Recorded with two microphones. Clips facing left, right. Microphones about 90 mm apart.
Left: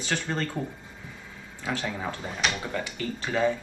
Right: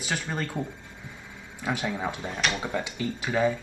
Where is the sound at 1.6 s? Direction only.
15° right (ahead or behind).